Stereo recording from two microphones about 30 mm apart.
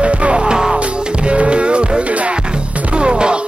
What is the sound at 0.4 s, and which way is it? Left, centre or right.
Music, right.